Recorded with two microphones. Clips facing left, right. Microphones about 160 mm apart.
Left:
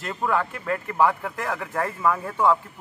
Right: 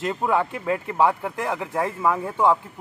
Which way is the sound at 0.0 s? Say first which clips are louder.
Right 3 dB; 20° right (ahead or behind).